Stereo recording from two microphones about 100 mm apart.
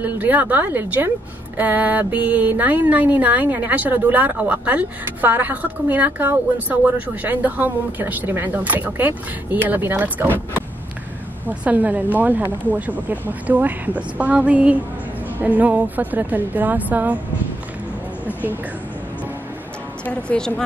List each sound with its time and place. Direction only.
0.0 s a woman's voice: 15° right (ahead or behind)
18.2 s a sound: 15° right (ahead or behind)
20.1 s a woman's voice: 10° left (ahead or behind)